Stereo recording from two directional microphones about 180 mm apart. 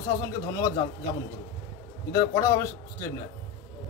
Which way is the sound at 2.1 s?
15° left (ahead or behind).